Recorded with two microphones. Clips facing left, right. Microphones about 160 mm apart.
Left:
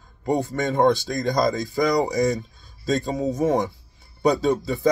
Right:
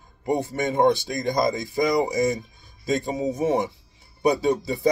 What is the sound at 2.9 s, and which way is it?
Speech, 10° right (ahead or behind).